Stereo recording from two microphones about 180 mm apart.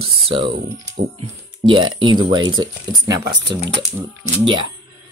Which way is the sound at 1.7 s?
25° right (ahead or behind).